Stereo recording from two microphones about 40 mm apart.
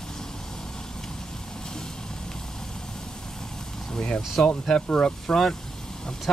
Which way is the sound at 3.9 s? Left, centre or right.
Left.